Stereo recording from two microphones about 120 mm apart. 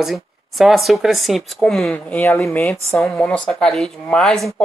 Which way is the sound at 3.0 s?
10° left (ahead or behind).